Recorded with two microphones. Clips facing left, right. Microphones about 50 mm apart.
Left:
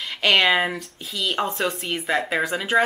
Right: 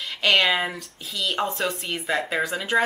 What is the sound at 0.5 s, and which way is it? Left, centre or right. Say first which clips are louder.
Speech: left 3 dB; centre.